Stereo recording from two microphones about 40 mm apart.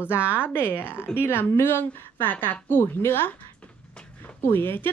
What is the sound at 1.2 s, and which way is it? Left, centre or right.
A woman's voice, left.